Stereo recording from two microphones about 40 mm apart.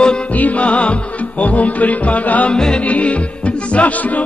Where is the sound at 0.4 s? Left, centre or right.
Left.